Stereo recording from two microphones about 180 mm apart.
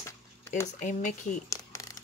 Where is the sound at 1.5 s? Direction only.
15° left (ahead or behind).